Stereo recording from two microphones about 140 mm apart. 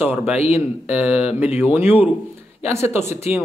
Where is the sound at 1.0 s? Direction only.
10° right (ahead or behind).